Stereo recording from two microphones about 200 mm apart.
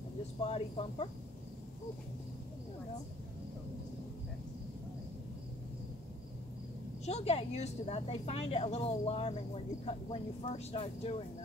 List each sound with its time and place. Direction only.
0.5 s cricket: 30° left (ahead or behind)
7.1 s speech: 30° left (ahead or behind)